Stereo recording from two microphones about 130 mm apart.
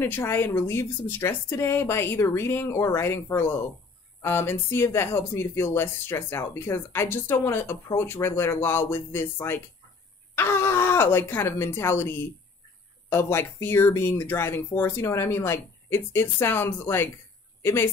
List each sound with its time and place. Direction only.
0.0 s speech: 15° left (ahead or behind)